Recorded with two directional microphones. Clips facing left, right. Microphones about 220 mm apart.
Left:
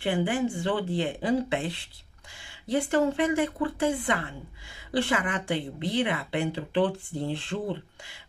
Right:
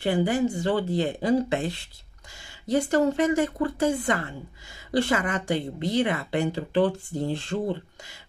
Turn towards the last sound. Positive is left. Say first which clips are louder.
# right 3 dB
turn(degrees=-45)  # may be behind; listen again after turning